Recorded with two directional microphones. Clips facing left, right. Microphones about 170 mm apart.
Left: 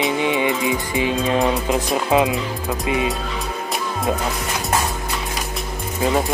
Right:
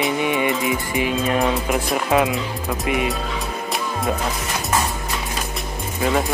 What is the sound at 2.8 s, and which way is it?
Music, 20° left (ahead or behind).